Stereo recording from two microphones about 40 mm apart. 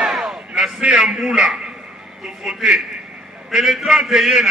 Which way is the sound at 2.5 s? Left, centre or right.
Centre.